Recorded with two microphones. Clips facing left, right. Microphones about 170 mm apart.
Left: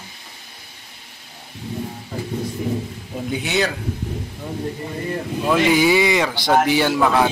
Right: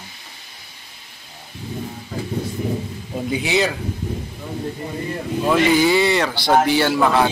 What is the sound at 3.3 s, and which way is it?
Speech, centre (ahead or behind).